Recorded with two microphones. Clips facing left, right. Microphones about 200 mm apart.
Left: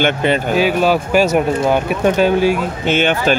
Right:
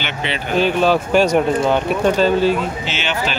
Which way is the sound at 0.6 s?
5° left (ahead or behind).